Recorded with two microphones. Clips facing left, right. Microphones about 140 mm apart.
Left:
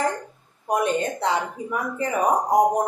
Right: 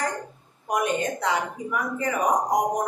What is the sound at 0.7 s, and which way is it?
Speech, 30° left (ahead or behind).